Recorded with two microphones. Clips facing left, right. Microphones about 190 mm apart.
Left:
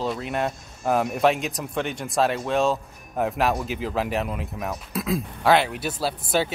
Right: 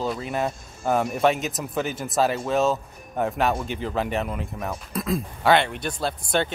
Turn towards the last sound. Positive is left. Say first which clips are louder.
# left 1 dB
turn(degrees=5)  # may be behind; listen again after turning